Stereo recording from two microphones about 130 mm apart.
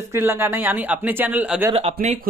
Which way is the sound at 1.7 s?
55° right (ahead or behind).